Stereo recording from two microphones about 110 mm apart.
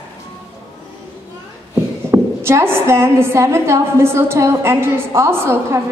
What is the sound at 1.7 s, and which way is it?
A woman's voice, 25° right (ahead or behind).